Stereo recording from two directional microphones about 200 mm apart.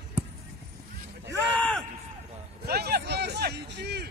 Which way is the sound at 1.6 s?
5° left (ahead or behind).